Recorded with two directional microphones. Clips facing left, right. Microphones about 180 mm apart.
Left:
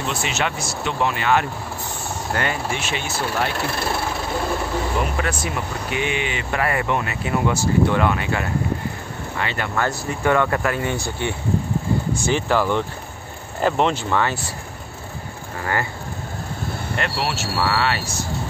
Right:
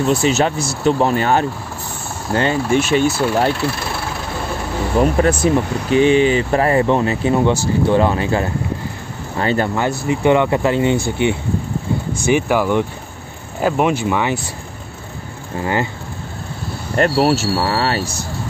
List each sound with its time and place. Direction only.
0.0 s speech: 40° right (ahead or behind)
2.7 s speech: 40° right (ahead or behind)
5.0 s speech: 35° right (ahead or behind)
9.8 s speech: 20° right (ahead or behind)
15.6 s speech: 20° right (ahead or behind)
16.9 s speech: 40° right (ahead or behind)